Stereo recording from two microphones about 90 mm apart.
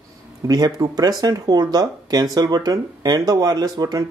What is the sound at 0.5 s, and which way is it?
Speech, 45° right (ahead or behind).